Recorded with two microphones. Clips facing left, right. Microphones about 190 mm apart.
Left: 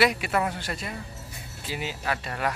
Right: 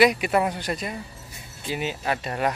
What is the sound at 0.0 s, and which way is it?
Speech, 15° right (ahead or behind).